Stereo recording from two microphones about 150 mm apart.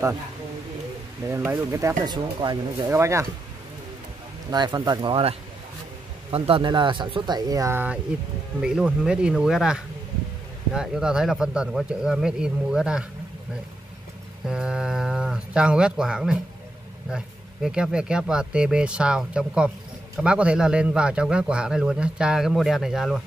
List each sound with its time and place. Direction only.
1.3 s speech: 20° right (ahead or behind)
2.9 s speech: 20° right (ahead or behind)
4.5 s a man's voice: 30° right (ahead or behind); by 13.0 s 5° right (ahead or behind)
14.5 s a man's voice: 5° right (ahead or behind)